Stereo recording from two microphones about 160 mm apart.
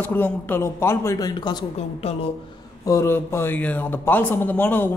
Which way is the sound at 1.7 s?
40° left (ahead or behind).